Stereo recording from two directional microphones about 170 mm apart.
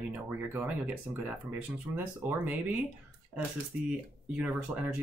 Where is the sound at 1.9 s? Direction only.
10° right (ahead or behind).